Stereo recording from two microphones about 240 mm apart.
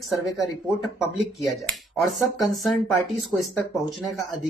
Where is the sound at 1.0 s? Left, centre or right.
Centre.